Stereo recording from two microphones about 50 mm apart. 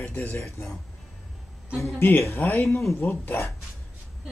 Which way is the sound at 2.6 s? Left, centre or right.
Left.